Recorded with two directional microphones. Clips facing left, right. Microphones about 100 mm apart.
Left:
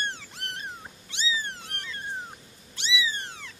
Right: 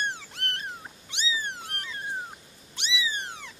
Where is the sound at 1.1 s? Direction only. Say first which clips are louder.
Even; 20° right (ahead or behind).